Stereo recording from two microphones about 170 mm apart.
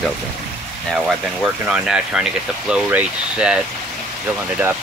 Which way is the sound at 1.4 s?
5° right (ahead or behind).